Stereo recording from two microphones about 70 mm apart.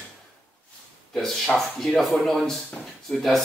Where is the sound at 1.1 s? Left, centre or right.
Centre.